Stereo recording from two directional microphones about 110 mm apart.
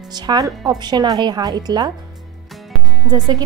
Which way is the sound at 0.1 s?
35° right (ahead or behind).